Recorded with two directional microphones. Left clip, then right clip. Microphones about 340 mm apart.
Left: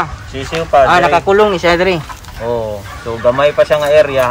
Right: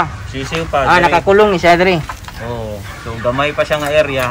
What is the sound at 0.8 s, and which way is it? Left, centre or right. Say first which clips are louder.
Speech: right 1 dB; centre.